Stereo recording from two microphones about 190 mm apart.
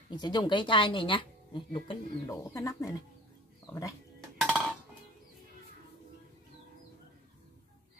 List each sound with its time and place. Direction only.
0.1 s speech: 20° left (ahead or behind)
4.4 s music: centre (ahead or behind)